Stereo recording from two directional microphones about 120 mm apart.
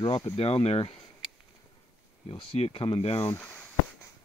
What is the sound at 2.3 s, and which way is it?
Speech, 50° left (ahead or behind).